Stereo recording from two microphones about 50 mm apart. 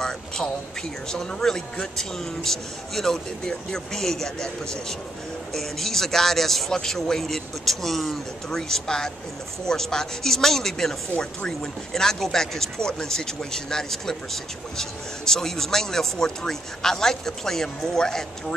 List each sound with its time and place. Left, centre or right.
1.1 s speech: centre